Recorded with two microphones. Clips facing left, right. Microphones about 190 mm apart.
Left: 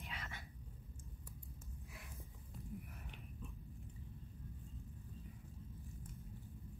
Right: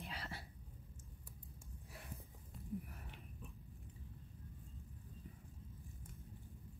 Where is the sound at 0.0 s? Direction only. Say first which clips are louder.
Right 2 dB; 35° right (ahead or behind).